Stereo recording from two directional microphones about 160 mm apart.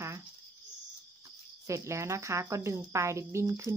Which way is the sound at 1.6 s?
20° right (ahead or behind).